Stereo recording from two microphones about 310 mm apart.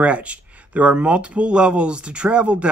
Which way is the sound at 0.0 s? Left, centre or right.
Centre.